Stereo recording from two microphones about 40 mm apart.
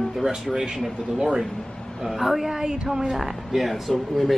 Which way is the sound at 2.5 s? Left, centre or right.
Centre.